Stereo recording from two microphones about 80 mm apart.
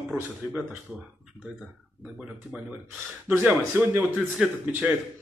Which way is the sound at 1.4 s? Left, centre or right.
Centre.